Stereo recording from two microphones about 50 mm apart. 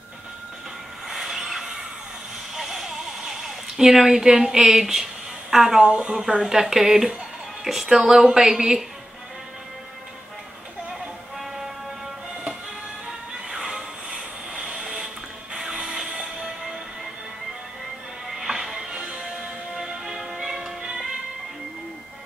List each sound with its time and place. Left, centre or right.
1.0 s a sound: centre
5.9 s speech: centre
6.1 s speech: centre
10.9 s music: centre
13.5 s music: centre
15.5 s train: centre
18.3 s music: centre